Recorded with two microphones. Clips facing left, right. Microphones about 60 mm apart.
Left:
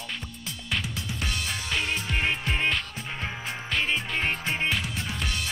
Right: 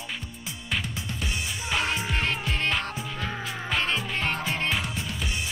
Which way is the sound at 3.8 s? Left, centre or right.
Centre.